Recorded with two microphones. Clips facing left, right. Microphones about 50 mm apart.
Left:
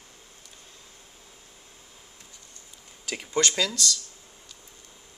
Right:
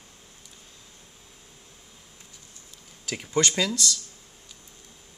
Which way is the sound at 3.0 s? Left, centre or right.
Centre.